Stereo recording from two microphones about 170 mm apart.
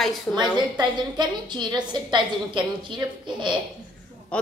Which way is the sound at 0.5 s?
25° right (ahead or behind).